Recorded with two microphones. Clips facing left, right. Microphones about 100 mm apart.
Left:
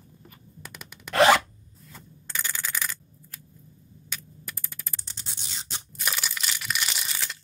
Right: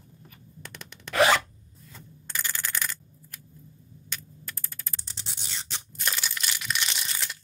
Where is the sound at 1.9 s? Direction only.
5° left (ahead or behind).